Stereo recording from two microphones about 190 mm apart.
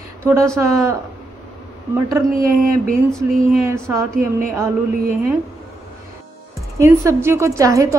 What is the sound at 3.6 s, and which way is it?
Speech, 15° right (ahead or behind).